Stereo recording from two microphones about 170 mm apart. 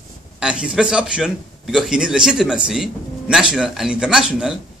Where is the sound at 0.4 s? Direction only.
5° right (ahead or behind).